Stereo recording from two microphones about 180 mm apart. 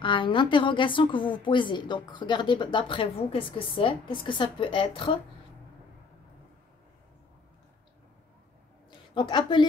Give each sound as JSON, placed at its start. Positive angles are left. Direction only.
{"t": 0.0, "sound": "a woman's voice", "side_deg": 25}
{"t": 9.1, "sound": "a woman's voice", "side_deg": 25}